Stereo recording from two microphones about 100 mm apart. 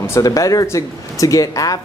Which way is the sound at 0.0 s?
30° left (ahead or behind).